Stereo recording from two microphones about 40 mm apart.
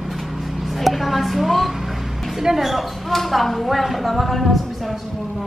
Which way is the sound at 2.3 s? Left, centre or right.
Centre.